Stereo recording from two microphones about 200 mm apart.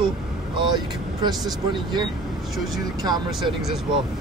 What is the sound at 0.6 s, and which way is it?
Speech, 20° right (ahead or behind).